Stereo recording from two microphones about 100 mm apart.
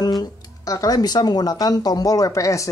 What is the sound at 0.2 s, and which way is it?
Speech, 35° left (ahead or behind).